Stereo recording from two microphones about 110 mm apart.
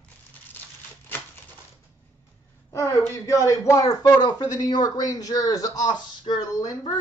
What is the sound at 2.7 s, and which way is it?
Speech, 30° left (ahead or behind).